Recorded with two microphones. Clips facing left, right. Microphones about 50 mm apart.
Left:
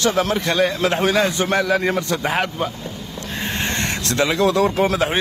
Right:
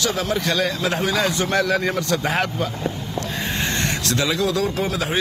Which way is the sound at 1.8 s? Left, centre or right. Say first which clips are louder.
Left 1 dB; left.